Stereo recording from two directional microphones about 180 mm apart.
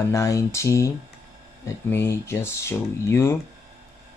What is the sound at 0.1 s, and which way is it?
Speech, 15° left (ahead or behind).